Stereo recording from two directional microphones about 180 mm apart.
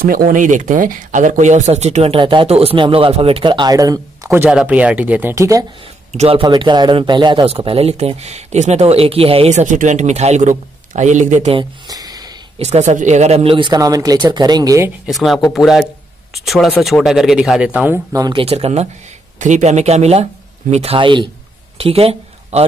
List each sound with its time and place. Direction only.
0.1 s speech: 50° right (ahead or behind); by 5.7 s 15° right (ahead or behind)
6.1 s speech: 30° right (ahead or behind)
11.5 s a sound: 20° right (ahead or behind)
12.5 s speech: 35° right (ahead or behind); by 14.9 s 20° right (ahead or behind)
15.0 s speech: centre (ahead or behind); by 18.4 s 20° right (ahead or behind)
18.4 s speech: 35° right (ahead or behind)